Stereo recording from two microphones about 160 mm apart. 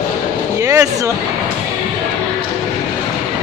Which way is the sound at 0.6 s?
20° right (ahead or behind).